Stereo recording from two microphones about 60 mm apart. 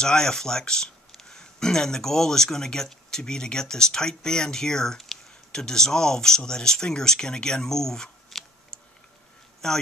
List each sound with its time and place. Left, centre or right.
0.0 s speech: centre
9.6 s a man's voice: centre